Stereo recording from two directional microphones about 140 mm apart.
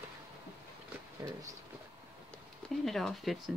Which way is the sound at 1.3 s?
25° right (ahead or behind).